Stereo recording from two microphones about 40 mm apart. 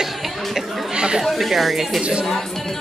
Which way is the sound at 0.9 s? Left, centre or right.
Right.